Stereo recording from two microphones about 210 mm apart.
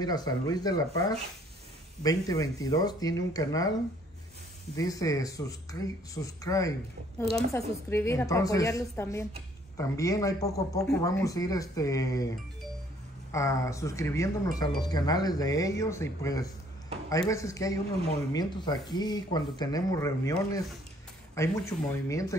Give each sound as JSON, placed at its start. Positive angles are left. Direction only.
{"t": 0.0, "sound": "speech", "side_deg": 20}
{"t": 4.7, "sound": "speech", "side_deg": 15}
{"t": 7.3, "sound": "a woman's voice", "side_deg": -30}
{"t": 7.9, "sound": "speech", "side_deg": 15}
{"t": 13.3, "sound": "speech", "side_deg": 15}
{"t": 21.4, "sound": "speech", "side_deg": 15}